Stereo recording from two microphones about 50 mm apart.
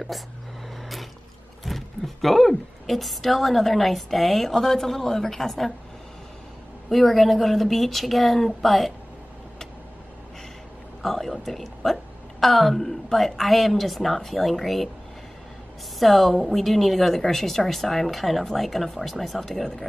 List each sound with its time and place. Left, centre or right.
1.6 s a sound: centre
2.2 s a woman's voice: centre
6.9 s a woman's voice: centre
11.0 s a woman's voice: centre
16.0 s a woman's voice: centre